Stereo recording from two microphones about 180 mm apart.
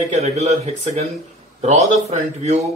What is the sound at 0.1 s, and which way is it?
Speech, 35° right (ahead or behind).